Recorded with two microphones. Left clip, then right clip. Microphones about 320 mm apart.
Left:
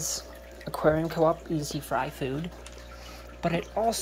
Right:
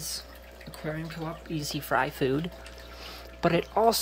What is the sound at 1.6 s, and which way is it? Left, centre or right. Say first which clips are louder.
Speech: right 2 dB; centre.